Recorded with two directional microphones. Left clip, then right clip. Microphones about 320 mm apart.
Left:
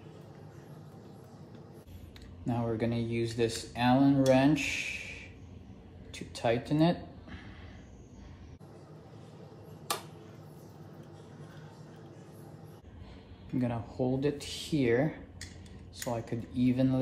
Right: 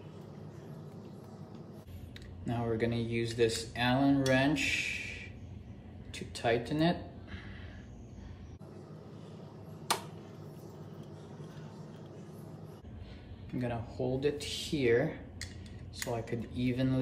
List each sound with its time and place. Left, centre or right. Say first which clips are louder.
2.4 s speech: left 1 dB; centre
6.1 s a sound: left 1 dB; centre
13.6 s speech: left 3 dB; centre
16.3 s speech: left 4 dB; centre